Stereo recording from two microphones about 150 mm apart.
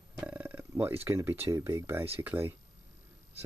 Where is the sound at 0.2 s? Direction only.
10° right (ahead or behind).